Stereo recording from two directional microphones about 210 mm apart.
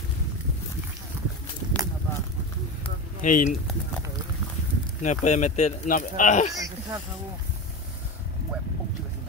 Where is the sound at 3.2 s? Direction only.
40° left (ahead or behind).